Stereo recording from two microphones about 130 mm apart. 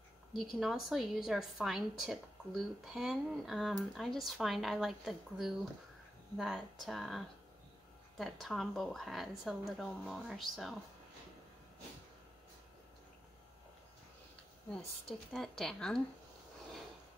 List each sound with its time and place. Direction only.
0.3 s a woman's voice: centre (ahead or behind)
14.7 s a woman's voice: 5° left (ahead or behind)